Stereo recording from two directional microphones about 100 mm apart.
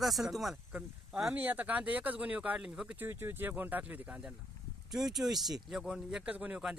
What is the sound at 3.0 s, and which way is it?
Speech, 25° right (ahead or behind).